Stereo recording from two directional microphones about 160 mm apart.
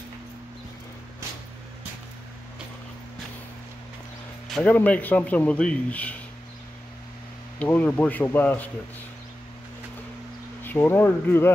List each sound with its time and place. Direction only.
4.6 s speech: 10° left (ahead or behind)
7.5 s speech: 10° left (ahead or behind)
10.6 s speech: 10° left (ahead or behind)